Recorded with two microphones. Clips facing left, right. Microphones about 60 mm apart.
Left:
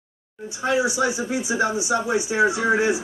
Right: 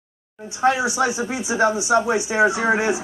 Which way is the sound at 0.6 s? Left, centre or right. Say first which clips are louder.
Right 4 dB; right.